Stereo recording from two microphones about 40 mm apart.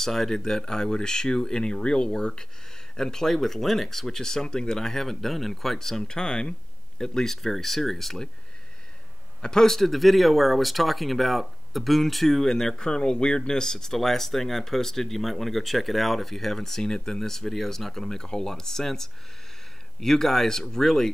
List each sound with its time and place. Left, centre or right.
0.0 s speech: centre
9.4 s speech: centre